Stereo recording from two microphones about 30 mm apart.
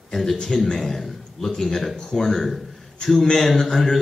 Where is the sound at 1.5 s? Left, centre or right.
Left.